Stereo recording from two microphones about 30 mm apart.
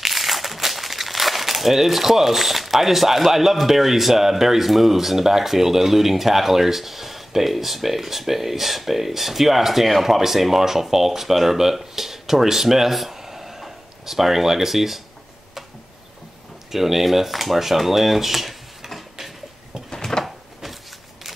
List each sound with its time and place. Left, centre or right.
0.0 s speech: centre
13.2 s a sound: centre
16.7 s speech: centre
20.0 s drawer open or close: centre